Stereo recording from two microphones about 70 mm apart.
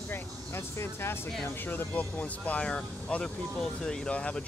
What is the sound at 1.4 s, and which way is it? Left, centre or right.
Speech, left.